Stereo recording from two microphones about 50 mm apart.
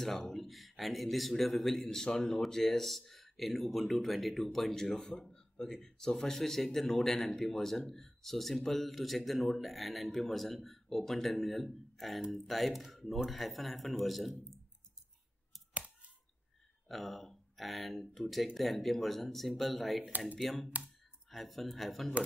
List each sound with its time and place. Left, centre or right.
0.3 s speech: centre
15.7 s scissors: right
16.8 s speech: centre